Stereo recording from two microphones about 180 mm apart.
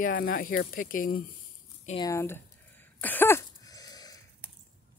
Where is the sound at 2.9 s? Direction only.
10° left (ahead or behind).